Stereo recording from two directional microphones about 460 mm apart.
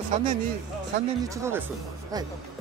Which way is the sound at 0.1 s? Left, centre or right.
Centre.